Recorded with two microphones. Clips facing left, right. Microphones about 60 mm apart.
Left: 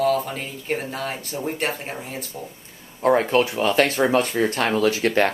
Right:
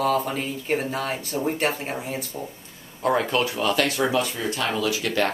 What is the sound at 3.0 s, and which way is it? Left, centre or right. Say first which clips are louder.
Speech: left 4 dB; left.